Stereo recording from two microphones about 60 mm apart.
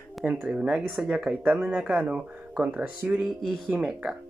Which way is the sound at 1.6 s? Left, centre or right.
Centre.